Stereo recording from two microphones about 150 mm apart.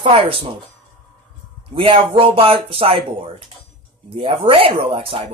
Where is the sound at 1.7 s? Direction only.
35° right (ahead or behind).